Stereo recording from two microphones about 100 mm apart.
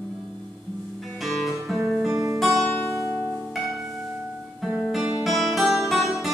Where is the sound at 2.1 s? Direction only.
30° right (ahead or behind).